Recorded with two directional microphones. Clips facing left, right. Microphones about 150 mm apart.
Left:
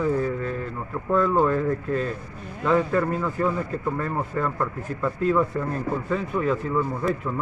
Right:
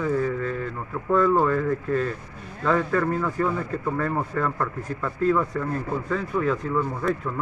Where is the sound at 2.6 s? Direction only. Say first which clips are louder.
Left 1 dB; 10° left (ahead or behind).